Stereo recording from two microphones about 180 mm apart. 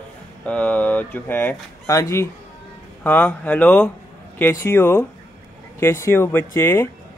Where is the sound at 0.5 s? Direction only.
10° left (ahead or behind).